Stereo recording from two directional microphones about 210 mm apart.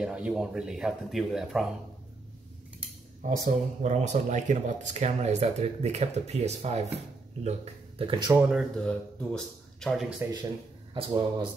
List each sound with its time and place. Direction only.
0.0 s speech: 5° right (ahead or behind)
3.3 s speech: 35° right (ahead or behind)
8.3 s speech: 5° right (ahead or behind)
10.9 s speech: 25° right (ahead or behind)